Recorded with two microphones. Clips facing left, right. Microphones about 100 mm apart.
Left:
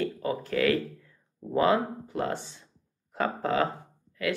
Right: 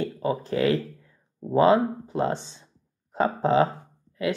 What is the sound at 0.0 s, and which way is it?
Speech, 25° right (ahead or behind).